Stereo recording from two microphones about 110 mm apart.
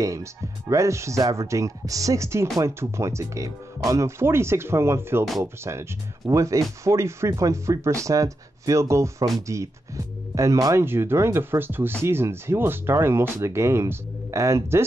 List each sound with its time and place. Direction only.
0.0 s speech: 30° right (ahead or behind)